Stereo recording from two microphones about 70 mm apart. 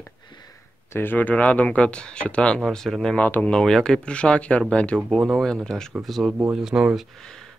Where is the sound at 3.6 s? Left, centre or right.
Centre.